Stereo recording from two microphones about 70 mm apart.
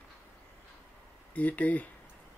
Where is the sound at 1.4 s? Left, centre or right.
Left.